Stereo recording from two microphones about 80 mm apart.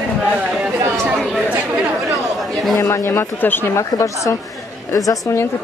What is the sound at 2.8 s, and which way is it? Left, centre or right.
Speech, left.